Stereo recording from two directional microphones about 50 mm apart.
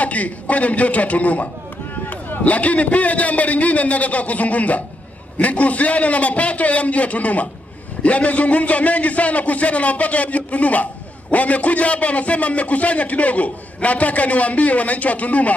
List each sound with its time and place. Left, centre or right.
0.0 s a man's voice: left